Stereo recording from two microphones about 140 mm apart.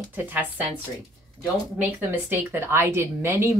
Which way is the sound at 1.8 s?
15° right (ahead or behind).